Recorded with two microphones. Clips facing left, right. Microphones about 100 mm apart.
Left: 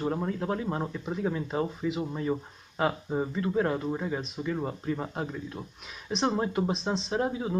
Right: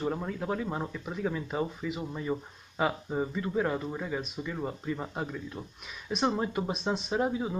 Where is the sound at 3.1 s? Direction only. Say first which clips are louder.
Left 2 dB; 5° left (ahead or behind).